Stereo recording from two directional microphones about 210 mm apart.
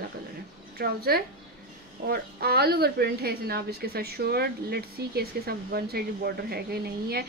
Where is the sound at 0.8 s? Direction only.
45° right (ahead or behind).